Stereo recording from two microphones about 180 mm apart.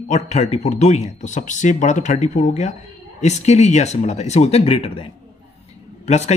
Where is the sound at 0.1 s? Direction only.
40° left (ahead or behind).